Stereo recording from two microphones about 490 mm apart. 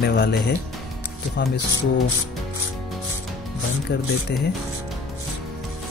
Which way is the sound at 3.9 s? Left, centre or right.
Centre.